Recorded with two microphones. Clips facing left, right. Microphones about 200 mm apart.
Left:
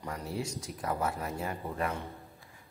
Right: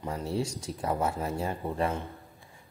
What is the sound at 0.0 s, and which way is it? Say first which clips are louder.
Speech: right 5 dB; 25° right (ahead or behind).